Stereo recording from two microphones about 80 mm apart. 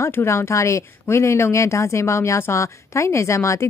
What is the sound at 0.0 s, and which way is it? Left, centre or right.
Speech, left.